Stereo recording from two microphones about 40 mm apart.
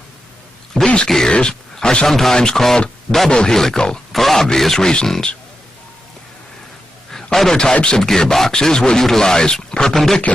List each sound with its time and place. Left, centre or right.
1.0 s speech: centre
1.3 s speech: left
2.0 s speech: centre
4.1 s speech: centre
7.1 s a sound: centre
7.8 s speech: left
8.1 s speech: centre